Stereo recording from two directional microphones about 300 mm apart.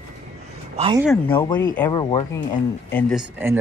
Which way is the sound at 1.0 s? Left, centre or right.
Centre.